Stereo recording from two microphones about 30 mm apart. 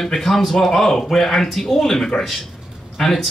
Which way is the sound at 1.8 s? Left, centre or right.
Centre.